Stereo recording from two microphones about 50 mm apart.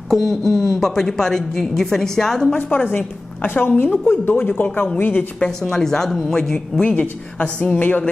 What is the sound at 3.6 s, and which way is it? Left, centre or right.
A woman's voice, left.